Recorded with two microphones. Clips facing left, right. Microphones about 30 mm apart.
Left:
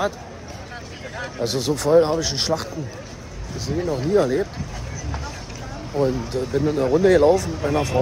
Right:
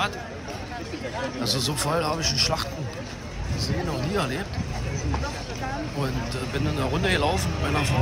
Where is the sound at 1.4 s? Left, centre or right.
Right.